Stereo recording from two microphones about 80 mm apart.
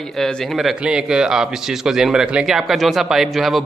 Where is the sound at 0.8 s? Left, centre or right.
Centre.